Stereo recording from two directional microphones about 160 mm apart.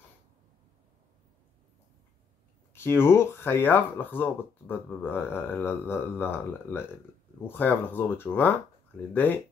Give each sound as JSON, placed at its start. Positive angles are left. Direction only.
{"t": 2.7, "sound": "speech", "side_deg": 15}